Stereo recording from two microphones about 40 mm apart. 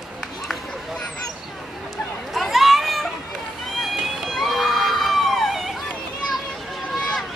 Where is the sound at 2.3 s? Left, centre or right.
Centre.